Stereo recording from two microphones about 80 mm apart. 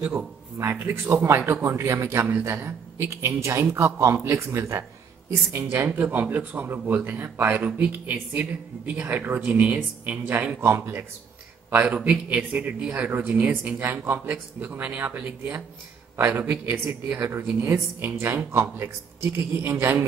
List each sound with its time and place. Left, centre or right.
0.6 s a man's voice: right
11.7 s a man's voice: centre; by 20.1 s right